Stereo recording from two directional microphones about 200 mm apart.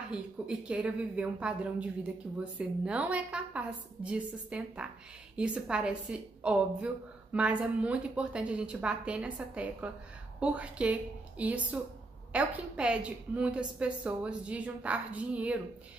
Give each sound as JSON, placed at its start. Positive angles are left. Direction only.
{"t": 0.1, "sound": "a woman's voice", "side_deg": -5}